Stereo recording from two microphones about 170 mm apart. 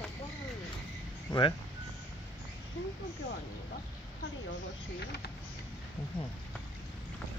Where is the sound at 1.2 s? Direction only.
25° left (ahead or behind).